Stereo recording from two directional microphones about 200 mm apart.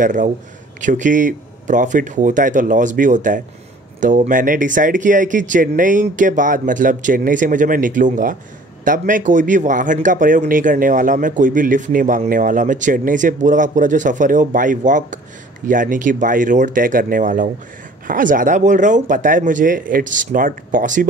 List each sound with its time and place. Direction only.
0.0 s speech: 40° right (ahead or behind)